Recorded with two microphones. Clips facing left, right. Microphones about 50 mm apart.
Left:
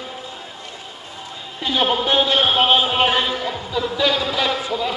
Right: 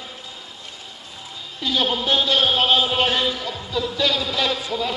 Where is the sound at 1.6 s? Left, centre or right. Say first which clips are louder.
Left 3 dB; left.